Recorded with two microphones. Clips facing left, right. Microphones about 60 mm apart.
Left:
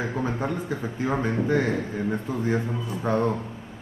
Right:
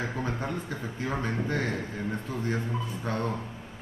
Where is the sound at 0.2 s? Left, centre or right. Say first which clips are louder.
Left 5 dB; centre.